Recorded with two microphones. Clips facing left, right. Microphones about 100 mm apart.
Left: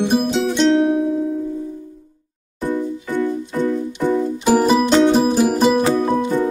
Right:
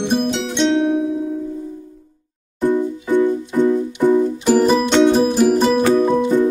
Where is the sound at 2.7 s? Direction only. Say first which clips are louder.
Right 5 dB; 15° right (ahead or behind).